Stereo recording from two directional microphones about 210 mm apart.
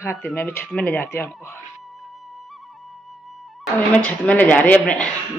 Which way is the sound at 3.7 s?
5° left (ahead or behind).